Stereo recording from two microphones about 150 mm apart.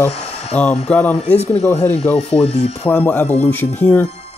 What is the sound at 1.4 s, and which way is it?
Speech, 45° left (ahead or behind).